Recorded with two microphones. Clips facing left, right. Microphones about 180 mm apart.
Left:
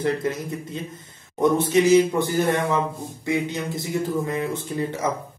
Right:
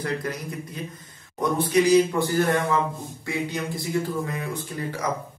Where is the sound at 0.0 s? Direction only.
25° left (ahead or behind).